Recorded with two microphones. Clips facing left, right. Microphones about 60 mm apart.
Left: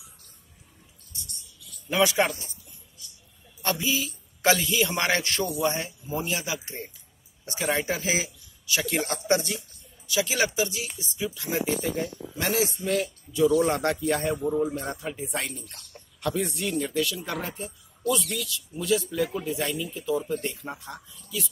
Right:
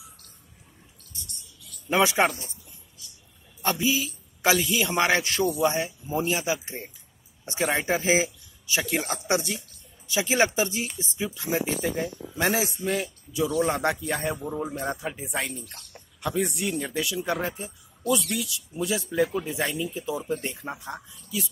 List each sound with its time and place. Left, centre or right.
1.9 s speech: right
3.6 s a man's voice: centre
5.9 s speech: centre
8.8 s a man's voice: centre
10.0 s speech: right
11.0 s speech: centre
12.6 s speech: centre
14.5 s a man's voice: centre
15.3 s speech: centre
15.7 s a man's voice: centre
18.0 s speech: centre
18.8 s a man's voice: centre